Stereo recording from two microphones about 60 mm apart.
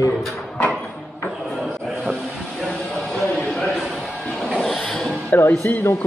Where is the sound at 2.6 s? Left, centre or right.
Centre.